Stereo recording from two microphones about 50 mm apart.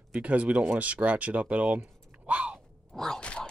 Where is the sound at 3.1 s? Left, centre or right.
Centre.